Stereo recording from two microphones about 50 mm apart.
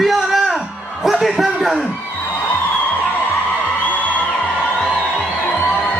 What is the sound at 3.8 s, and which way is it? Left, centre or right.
Music, left.